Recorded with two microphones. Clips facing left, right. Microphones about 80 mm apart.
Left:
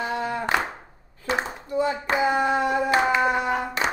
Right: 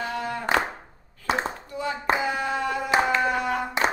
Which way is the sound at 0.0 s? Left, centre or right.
Left.